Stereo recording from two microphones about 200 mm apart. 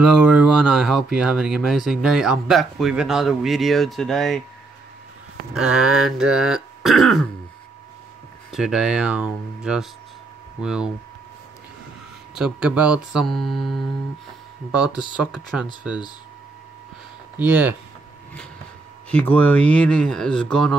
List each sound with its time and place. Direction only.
0.0 s speech: 5° right (ahead or behind)
5.5 s speech: 5° right (ahead or behind)
8.5 s speech: centre (ahead or behind)
12.4 s speech: 5° right (ahead or behind)
14.9 s speech: 20° left (ahead or behind)
15.3 s speech: 5° right (ahead or behind)
17.4 s speech: 10° right (ahead or behind)
19.0 s speech: 5° left (ahead or behind)